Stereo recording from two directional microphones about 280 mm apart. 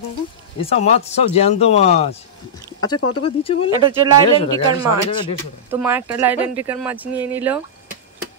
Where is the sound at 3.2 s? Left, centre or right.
Centre.